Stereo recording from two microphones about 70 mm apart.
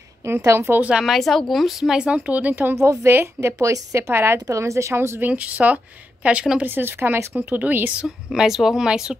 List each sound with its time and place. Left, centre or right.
0.2 s speech: right
0.8 s speech: centre
1.1 s speech: centre; by 2.7 s right
2.7 s a woman's voice: right
3.1 s speech: right
3.5 s a woman's voice: right
5.3 s speech: right
7.3 s speech: right
8.3 s speech: centre